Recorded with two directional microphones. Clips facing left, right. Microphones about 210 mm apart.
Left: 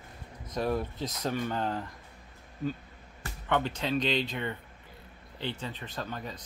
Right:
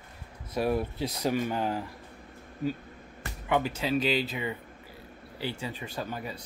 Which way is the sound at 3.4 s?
10° right (ahead or behind).